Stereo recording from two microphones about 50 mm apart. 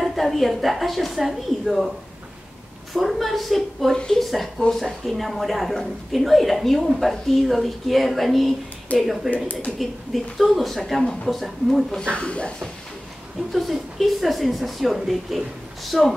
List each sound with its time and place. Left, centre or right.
0.0 s a woman's voice: centre
2.9 s speech: centre
3.9 s speech: centre
9.3 s speech: left
9.8 s speech: centre
12.0 s speech: left
13.5 s speech: centre